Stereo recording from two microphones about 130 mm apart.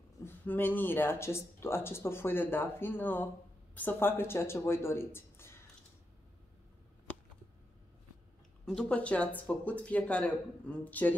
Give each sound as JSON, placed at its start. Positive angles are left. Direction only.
{"t": 0.2, "sound": "speech", "side_deg": 15}
{"t": 8.6, "sound": "speech", "side_deg": 10}